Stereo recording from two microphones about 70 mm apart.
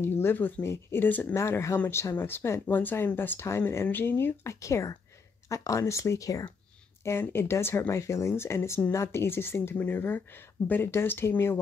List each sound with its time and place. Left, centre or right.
0.0 s speech: left
0.6 s speech: left
1.0 s speech: left
1.9 s speech: left
7.1 s speech: left